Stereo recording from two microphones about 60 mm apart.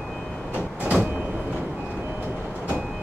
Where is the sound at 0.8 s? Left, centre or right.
Centre.